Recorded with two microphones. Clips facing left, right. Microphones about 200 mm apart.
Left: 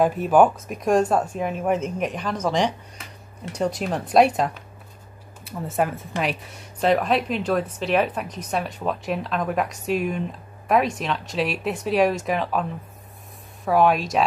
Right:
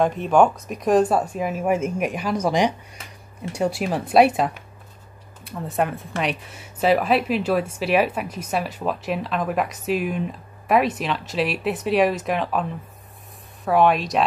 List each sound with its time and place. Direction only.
0.0 s speech: 5° left (ahead or behind)
13.7 s speech: centre (ahead or behind)